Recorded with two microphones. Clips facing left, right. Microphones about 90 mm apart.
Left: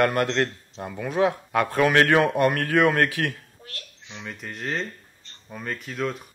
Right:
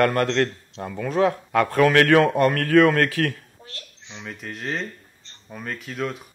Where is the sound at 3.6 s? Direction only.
25° right (ahead or behind).